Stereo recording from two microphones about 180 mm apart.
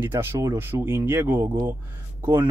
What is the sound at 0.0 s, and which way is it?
Speech, 15° right (ahead or behind).